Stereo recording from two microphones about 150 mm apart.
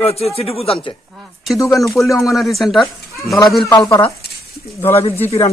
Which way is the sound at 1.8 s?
Centre (ahead or behind).